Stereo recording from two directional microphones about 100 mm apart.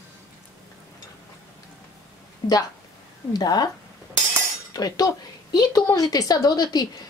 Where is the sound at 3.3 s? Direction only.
40° left (ahead or behind).